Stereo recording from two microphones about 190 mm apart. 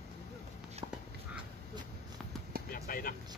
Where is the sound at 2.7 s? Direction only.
50° left (ahead or behind).